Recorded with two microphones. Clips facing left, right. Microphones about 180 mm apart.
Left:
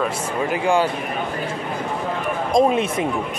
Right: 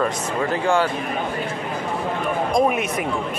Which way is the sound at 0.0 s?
15° left (ahead or behind).